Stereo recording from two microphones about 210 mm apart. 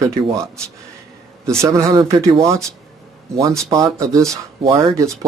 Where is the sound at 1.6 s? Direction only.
15° right (ahead or behind).